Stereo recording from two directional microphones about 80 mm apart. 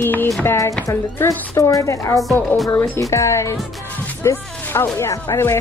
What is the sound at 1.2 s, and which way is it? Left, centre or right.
A woman's voice, left.